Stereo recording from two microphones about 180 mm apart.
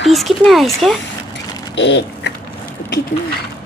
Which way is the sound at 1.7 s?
75° left (ahead or behind).